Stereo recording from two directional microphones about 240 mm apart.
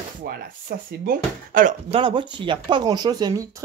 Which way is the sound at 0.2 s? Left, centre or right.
Right.